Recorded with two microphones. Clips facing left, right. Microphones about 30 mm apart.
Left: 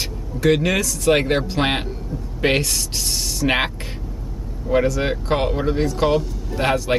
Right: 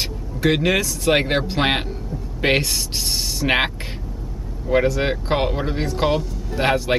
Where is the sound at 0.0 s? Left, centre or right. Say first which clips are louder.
Left 1 dB; centre.